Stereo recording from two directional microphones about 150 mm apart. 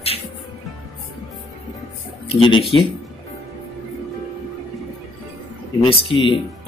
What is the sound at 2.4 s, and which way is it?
Speech, 35° left (ahead or behind).